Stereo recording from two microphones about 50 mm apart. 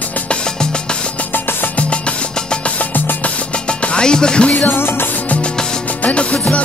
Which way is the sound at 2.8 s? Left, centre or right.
Left.